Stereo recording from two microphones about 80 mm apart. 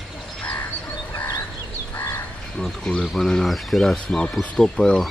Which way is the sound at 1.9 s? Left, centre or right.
Left.